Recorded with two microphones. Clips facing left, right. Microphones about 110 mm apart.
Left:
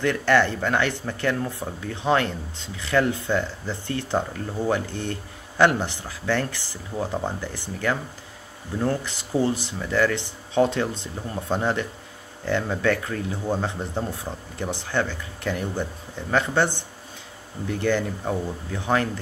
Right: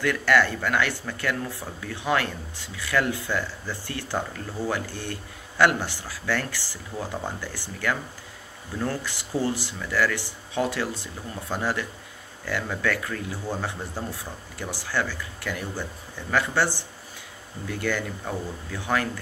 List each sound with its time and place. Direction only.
0.0 s speech: 30° left (ahead or behind)